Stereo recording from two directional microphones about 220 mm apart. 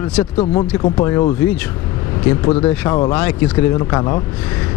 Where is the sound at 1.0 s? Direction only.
20° left (ahead or behind).